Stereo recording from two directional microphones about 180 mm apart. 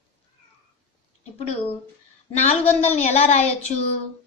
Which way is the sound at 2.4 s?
35° left (ahead or behind).